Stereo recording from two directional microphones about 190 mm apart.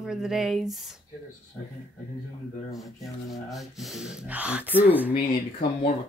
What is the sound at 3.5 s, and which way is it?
A woman's voice, centre (ahead or behind).